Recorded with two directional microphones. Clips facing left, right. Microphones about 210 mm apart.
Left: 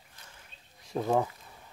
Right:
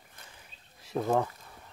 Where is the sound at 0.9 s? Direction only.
Centre (ahead or behind).